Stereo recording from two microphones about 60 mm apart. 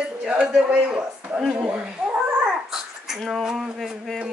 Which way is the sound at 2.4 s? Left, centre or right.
Centre.